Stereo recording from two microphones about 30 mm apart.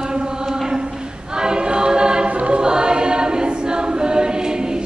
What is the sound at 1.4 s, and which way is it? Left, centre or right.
Choir, right.